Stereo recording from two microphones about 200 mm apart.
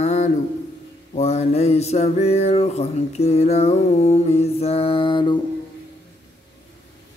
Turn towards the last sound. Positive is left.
turn(degrees=25)  # may be behind; listen again after turning